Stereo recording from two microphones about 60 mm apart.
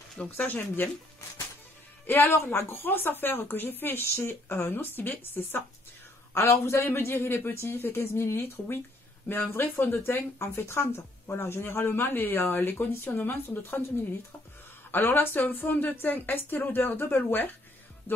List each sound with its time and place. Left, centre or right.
0.4 s speech: left
2.0 s speech: left
6.6 s speech: left
14.9 s speech: left